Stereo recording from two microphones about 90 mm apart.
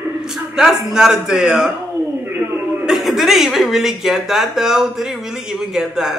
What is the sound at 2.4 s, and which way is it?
Chuckle, 25° right (ahead or behind).